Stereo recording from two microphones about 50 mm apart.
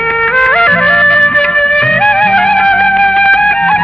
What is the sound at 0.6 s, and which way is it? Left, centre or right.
Music, centre.